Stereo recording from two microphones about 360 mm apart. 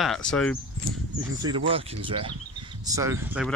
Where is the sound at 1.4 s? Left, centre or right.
Centre.